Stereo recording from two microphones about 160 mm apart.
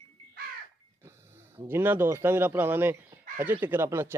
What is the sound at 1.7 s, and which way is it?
A man's voice, 15° right (ahead or behind).